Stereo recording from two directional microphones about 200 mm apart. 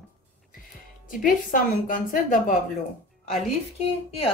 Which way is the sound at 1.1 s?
40° left (ahead or behind).